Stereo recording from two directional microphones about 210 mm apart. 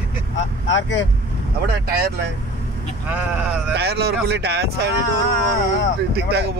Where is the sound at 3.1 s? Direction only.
5° right (ahead or behind).